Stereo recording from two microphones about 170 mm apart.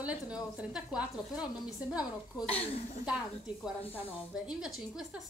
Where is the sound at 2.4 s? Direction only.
35° left (ahead or behind).